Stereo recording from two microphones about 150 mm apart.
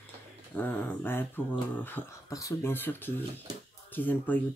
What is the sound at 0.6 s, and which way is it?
Speech, 15° left (ahead or behind).